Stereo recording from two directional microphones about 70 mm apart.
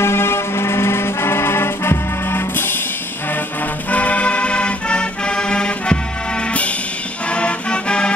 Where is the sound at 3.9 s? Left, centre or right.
Left.